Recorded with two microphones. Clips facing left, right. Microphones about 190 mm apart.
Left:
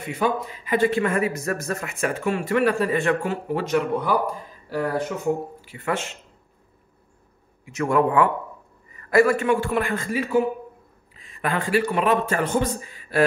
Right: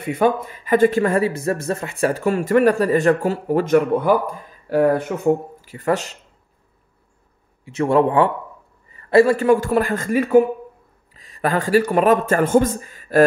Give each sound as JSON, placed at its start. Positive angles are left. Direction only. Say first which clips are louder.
{"t": 0.1, "sound": "speech", "louder": "right 6 dB", "side_deg": -50}
{"t": 7.6, "sound": "speech", "louder": "right 4 dB", "side_deg": -30}
{"t": 11.1, "sound": "a man's voice", "louder": "right 5 dB", "side_deg": -40}